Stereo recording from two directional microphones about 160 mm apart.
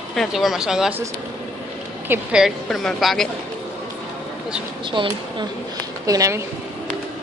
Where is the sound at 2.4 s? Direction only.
Centre (ahead or behind).